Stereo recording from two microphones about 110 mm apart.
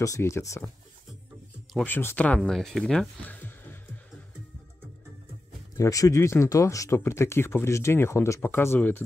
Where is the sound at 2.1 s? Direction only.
10° left (ahead or behind).